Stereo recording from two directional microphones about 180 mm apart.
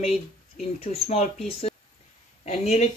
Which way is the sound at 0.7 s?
40° left (ahead or behind).